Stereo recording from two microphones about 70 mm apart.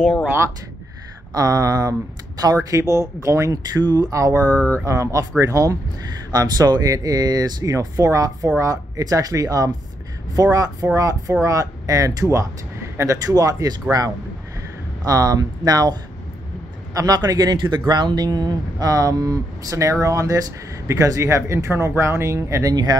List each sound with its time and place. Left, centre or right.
1.3 s speech: right
3.8 s speech: right
4.1 s speech: right
4.5 s speech: left
4.8 s speech: right
6.3 s speech: right
22.7 s speech: right